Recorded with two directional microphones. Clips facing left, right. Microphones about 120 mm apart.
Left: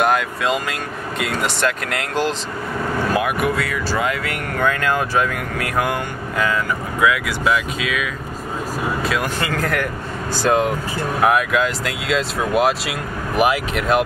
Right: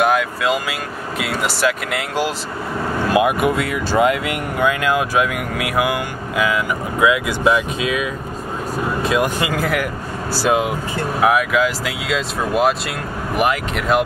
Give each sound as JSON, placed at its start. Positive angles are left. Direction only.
{"t": 0.0, "sound": "speech", "side_deg": 0}
{"t": 3.1, "sound": "speech", "side_deg": -20}
{"t": 7.0, "sound": "speech", "side_deg": -20}
{"t": 9.0, "sound": "speech", "side_deg": -20}